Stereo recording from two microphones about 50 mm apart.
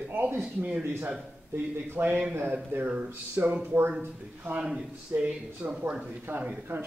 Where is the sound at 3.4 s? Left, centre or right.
Right.